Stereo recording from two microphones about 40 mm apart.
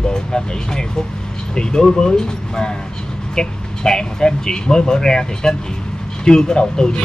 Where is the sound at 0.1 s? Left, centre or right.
Centre.